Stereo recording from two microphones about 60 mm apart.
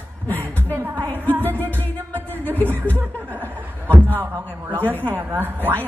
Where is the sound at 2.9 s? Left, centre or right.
Right.